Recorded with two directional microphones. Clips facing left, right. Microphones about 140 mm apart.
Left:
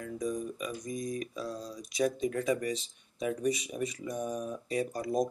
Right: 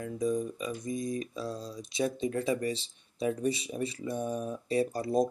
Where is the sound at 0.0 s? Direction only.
25° right (ahead or behind).